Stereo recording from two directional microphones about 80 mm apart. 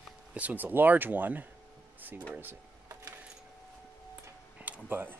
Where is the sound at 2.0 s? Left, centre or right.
Right.